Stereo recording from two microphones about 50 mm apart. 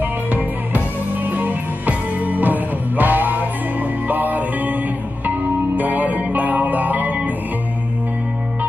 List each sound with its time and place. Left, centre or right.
1.3 s music: right